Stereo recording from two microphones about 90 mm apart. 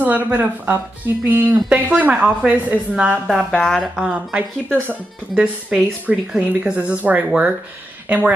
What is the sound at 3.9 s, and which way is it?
A woman's voice, 10° right (ahead or behind).